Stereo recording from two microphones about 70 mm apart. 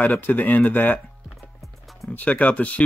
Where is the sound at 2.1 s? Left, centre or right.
Left.